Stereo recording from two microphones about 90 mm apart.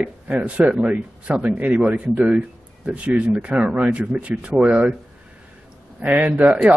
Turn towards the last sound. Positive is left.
turn(degrees=-15)  # may be behind; listen again after turning